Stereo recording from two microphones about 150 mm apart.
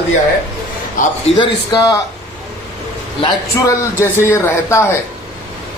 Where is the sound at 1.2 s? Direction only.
30° left (ahead or behind).